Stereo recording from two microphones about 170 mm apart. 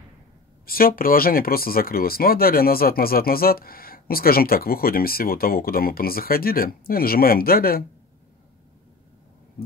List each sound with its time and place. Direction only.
0.7 s speech: 60° left (ahead or behind)